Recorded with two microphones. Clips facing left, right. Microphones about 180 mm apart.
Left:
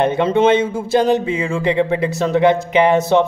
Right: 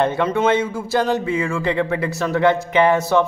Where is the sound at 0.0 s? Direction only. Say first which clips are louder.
Left 4 dB; 25° left (ahead or behind).